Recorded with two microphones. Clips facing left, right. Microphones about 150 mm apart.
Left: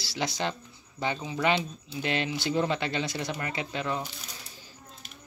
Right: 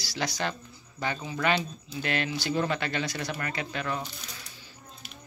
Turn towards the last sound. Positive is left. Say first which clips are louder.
# left 1 dB
turn(degrees=20)  # may be behind; listen again after turning